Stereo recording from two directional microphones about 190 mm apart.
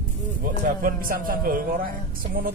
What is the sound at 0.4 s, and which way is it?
Speech, 45° right (ahead or behind).